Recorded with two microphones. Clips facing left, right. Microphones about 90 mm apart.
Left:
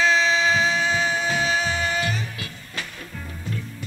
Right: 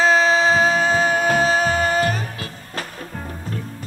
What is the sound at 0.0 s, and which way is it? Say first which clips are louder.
Music: right 4 dB; 45° right (ahead or behind).